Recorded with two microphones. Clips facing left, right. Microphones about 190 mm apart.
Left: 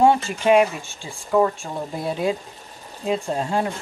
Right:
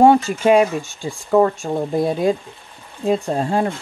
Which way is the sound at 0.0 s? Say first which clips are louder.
Right 5 dB; 45° right (ahead or behind).